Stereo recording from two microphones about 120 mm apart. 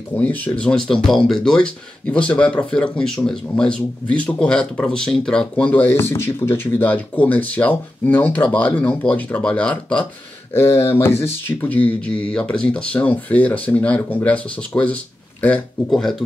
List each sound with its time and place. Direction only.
0.1 s speech: 15° left (ahead or behind)
10.5 s speech: 20° left (ahead or behind); by 16.2 s 5° left (ahead or behind)